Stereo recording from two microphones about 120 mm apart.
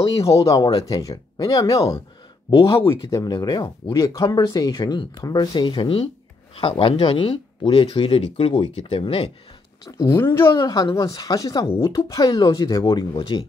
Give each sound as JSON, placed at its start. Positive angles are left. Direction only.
{"t": 0.2, "sound": "speech", "side_deg": 25}
{"t": 9.8, "sound": "speech", "side_deg": 25}
{"t": 10.6, "sound": "speech", "side_deg": 30}
{"t": 12.8, "sound": "speech", "side_deg": 40}